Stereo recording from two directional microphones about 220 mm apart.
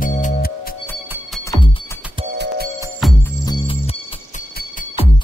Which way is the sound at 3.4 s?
20° left (ahead or behind).